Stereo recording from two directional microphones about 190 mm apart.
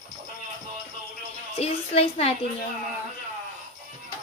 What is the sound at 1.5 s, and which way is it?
Speech, 35° left (ahead or behind).